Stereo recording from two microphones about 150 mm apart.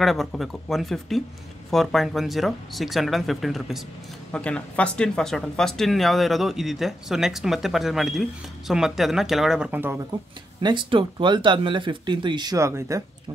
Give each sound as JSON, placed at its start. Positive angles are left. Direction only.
{"t": 0.0, "sound": "speech", "side_deg": 0}
{"t": 10.6, "sound": "speech", "side_deg": -30}